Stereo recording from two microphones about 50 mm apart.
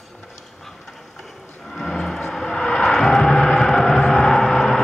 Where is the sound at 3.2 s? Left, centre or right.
Centre.